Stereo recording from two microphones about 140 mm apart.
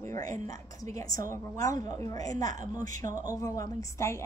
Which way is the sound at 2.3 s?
60° right (ahead or behind).